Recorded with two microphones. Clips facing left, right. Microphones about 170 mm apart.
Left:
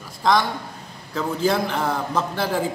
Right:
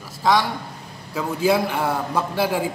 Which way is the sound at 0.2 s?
5° right (ahead or behind).